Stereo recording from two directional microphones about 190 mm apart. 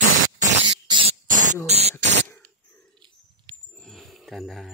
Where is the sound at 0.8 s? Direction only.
25° right (ahead or behind).